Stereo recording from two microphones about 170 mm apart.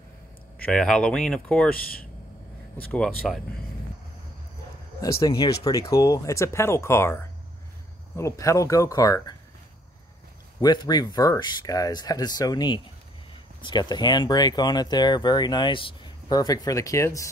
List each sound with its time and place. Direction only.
0.6 s speech: 5° left (ahead or behind)
2.9 s speech: 5° left (ahead or behind)
5.0 s speech: 20° left (ahead or behind)
10.6 s speech: 25° left (ahead or behind)